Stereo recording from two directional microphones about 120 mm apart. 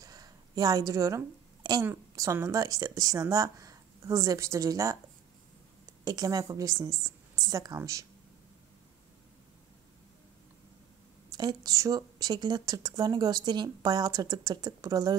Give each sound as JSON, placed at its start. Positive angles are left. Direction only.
{"t": 0.0, "sound": "a sound", "side_deg": -30}
{"t": 1.9, "sound": "speech", "side_deg": -20}
{"t": 6.0, "sound": "speech", "side_deg": -30}
{"t": 11.3, "sound": "speech", "side_deg": -30}